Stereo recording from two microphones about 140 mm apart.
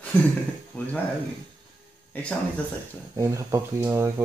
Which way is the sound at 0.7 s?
5° left (ahead or behind).